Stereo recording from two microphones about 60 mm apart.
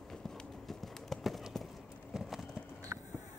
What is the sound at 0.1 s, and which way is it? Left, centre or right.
Clip-clop, centre.